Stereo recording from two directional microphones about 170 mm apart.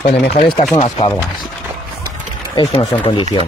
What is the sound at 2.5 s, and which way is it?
Speech, 35° left (ahead or behind).